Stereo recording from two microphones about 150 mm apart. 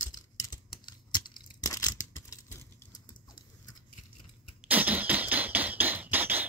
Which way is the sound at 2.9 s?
30° left (ahead or behind).